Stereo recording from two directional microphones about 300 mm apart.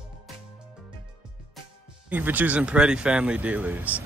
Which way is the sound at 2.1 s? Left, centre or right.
Centre.